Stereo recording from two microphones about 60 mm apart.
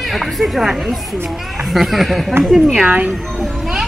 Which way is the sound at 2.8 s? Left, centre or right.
Right.